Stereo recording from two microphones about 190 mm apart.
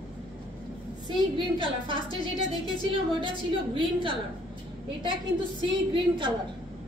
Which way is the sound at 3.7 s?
25° right (ahead or behind).